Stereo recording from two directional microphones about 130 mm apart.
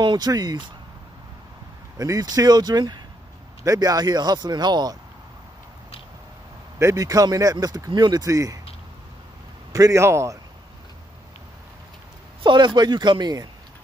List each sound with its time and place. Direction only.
0.0 s speech: 35° right (ahead or behind)
2.0 s speech: 25° right (ahead or behind)
6.8 s speech: 25° right (ahead or behind)
9.7 s speech: 25° right (ahead or behind)
12.4 s speech: 35° right (ahead or behind)